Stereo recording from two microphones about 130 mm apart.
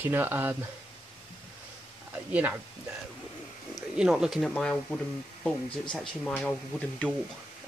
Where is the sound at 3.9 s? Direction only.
5° right (ahead or behind).